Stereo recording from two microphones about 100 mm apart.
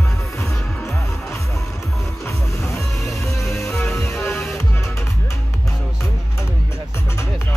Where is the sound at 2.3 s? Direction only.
30° left (ahead or behind).